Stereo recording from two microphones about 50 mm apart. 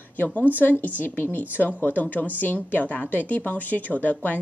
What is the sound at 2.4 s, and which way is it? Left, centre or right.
A woman's voice, left.